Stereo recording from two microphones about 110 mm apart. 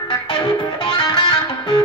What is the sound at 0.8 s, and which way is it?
Music, 45° left (ahead or behind).